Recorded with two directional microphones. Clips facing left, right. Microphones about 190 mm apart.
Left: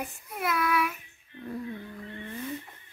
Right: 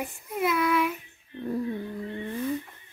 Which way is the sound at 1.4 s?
35° right (ahead or behind).